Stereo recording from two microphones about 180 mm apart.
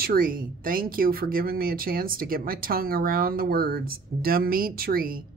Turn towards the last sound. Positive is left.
turn(degrees=-55)  # may be behind; listen again after turning